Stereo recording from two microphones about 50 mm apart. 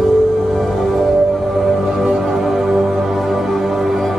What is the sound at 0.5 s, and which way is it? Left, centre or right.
Music, centre.